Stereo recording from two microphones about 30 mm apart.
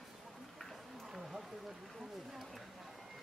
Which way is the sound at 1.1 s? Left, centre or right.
Centre.